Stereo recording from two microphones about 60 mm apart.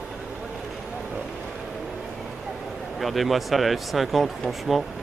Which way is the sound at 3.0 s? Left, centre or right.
Centre.